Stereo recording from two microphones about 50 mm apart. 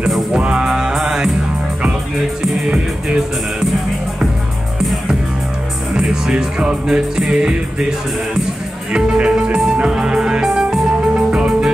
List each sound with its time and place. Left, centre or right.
0.4 s music: right
5.9 s music: centre
8.9 s music: centre